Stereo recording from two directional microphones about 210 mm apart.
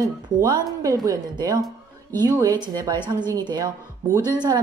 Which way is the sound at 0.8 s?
15° right (ahead or behind).